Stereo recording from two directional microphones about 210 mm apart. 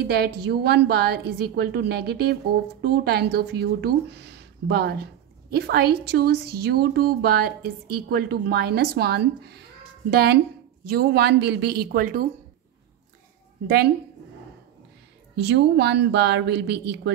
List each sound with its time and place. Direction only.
0.0 s a woman's voice: 50° right (ahead or behind)
15.3 s speech: 55° right (ahead or behind)